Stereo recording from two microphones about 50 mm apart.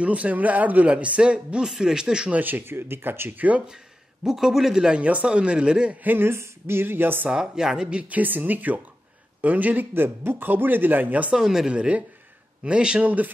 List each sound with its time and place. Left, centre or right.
0.0 s a man's voice: right
2.3 s a man's voice: right
4.2 s speech: centre
5.0 s a man's voice: right
6.0 s speech: right
6.3 s speech: right
7.2 s speech: centre
8.1 s a man's voice: right
11.3 s speech: centre
11.7 s a man's voice: right